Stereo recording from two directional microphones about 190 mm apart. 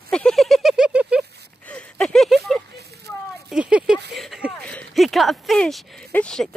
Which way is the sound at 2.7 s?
60° right (ahead or behind).